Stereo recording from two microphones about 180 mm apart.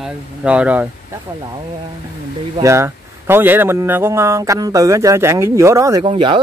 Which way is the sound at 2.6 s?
15° right (ahead or behind).